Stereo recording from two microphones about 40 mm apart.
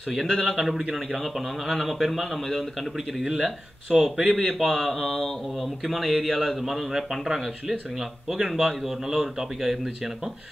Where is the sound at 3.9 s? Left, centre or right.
Centre.